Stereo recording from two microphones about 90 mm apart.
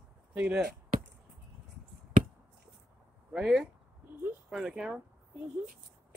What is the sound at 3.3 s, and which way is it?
Speech, 5° right (ahead or behind).